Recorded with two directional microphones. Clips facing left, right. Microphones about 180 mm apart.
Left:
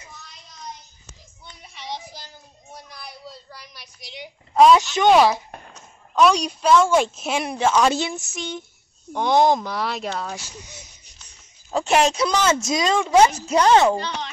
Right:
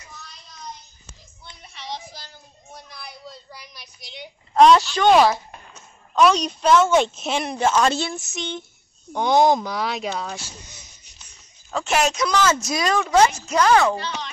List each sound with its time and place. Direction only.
1.4 s child singing: 10° left (ahead or behind)
3.4 s a sound: centre (ahead or behind)
4.7 s a woman's voice: 15° left (ahead or behind)
6.3 s speech: 5° left (ahead or behind)
7.9 s a woman's voice: 10° left (ahead or behind)
11.7 s speech: 30° left (ahead or behind); by 13.3 s 15° left (ahead or behind)
13.3 s speech: 30° left (ahead or behind)